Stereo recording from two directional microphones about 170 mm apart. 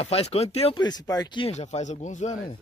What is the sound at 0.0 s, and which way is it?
A man's voice, 35° left (ahead or behind).